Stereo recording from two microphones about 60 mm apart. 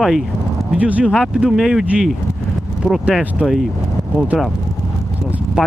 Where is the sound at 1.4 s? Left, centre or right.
Centre.